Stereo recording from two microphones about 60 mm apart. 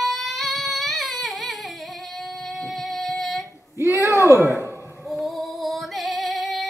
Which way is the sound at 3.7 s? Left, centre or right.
Right.